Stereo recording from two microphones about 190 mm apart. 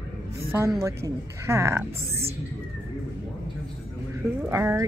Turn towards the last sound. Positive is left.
turn(degrees=-15)  # may be behind; listen again after turning